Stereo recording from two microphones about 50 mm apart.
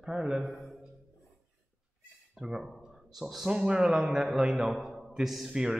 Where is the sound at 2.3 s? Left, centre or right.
Centre.